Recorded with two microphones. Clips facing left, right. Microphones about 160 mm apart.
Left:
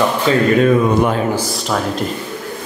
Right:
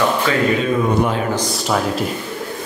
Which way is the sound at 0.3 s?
30° left (ahead or behind).